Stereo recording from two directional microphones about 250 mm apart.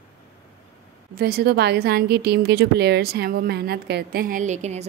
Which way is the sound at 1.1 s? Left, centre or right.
Right.